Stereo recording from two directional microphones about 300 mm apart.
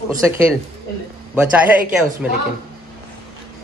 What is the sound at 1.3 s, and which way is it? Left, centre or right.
A man's voice, centre.